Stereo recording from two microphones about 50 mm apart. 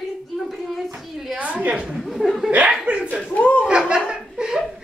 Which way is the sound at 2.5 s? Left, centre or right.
Right.